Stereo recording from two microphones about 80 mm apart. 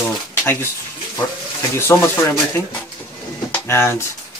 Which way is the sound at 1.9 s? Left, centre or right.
Left.